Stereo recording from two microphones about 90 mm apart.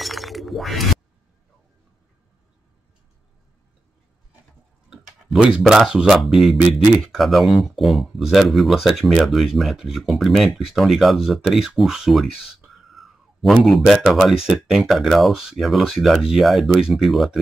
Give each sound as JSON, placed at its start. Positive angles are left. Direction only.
{"t": 0.0, "sound": "shatter", "side_deg": 0}
{"t": 4.8, "sound": "tick-tock", "side_deg": -5}
{"t": 5.6, "sound": "speech", "side_deg": -5}
{"t": 12.7, "sound": "a sound", "side_deg": 0}
{"t": 14.8, "sound": "speech", "side_deg": 0}